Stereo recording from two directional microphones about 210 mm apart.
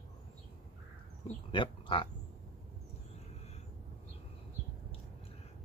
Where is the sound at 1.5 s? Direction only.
25° left (ahead or behind).